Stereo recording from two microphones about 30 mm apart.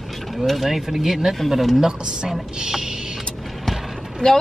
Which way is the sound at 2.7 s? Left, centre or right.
Centre.